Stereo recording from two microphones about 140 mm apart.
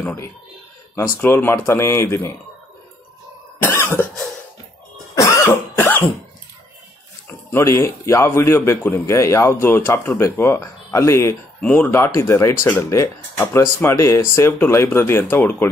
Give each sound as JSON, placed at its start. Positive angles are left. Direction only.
{"t": 0.0, "sound": "speech", "side_deg": 15}
{"t": 3.6, "sound": "cough", "side_deg": 20}
{"t": 5.1, "sound": "cough", "side_deg": 20}
{"t": 7.5, "sound": "a man's voice", "side_deg": 20}
{"t": 11.6, "sound": "speech", "side_deg": 10}